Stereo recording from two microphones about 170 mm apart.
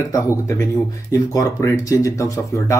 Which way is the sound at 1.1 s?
20° left (ahead or behind).